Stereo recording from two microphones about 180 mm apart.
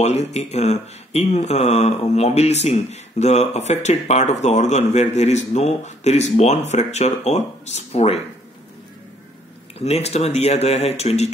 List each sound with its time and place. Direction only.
0.0 s speech: 40° left (ahead or behind)
9.8 s speech: 35° left (ahead or behind)